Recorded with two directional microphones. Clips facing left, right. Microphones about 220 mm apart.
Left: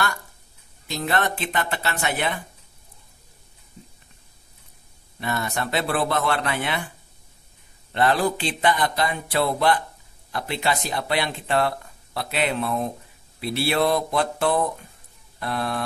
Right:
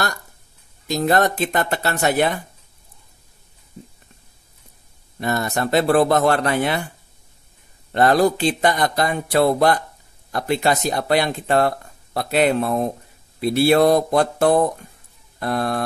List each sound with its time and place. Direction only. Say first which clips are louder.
0.8 s speech: right 7 dB; 40° right (ahead or behind)
5.2 s speech: right 5 dB; 40° right (ahead or behind)
7.9 s speech: right 5 dB; 40° right (ahead or behind)